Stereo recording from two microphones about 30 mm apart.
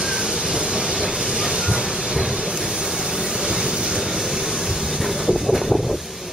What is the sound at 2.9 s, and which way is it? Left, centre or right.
Vehicle, centre.